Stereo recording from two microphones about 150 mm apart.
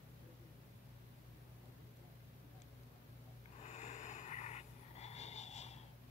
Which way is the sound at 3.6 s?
50° left (ahead or behind).